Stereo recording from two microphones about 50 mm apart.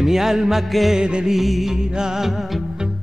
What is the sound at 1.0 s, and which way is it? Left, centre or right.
Music, centre.